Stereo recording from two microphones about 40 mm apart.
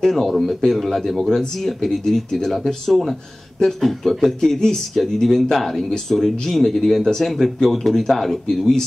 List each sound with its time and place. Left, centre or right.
0.3 s speech: centre